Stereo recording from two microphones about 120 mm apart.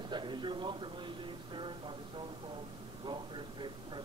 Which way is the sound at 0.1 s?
40° right (ahead or behind).